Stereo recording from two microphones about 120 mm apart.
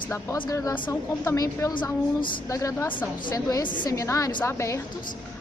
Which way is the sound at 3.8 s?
25° left (ahead or behind).